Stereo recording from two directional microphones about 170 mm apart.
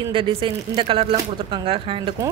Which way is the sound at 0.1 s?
30° right (ahead or behind).